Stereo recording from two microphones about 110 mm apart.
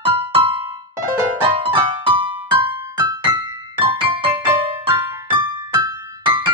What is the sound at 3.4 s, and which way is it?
Music, 50° right (ahead or behind).